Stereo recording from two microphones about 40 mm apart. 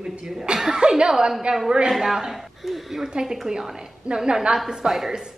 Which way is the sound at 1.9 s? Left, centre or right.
Centre.